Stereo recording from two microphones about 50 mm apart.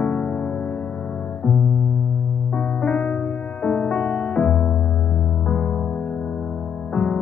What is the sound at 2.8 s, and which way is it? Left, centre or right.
Music, left.